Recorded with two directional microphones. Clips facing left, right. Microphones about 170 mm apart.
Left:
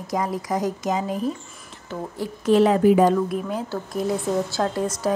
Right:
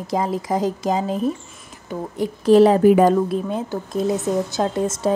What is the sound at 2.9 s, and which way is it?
Speech, 55° right (ahead or behind).